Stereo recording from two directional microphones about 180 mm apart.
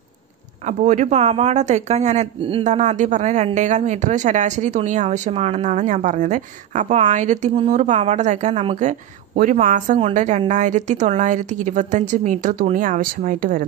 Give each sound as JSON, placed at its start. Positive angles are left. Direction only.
{"t": 0.7, "sound": "a woman's voice", "side_deg": -45}